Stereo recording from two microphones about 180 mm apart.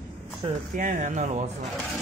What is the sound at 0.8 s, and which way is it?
Speech, 45° right (ahead or behind).